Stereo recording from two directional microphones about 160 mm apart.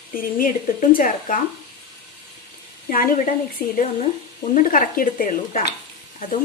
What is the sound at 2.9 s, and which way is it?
A woman's voice, 60° left (ahead or behind).